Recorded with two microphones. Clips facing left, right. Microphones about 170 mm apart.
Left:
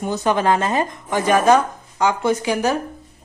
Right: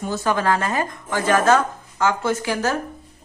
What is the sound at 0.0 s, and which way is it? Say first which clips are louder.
A woman's voice: left 3 dB; 20° left (ahead or behind).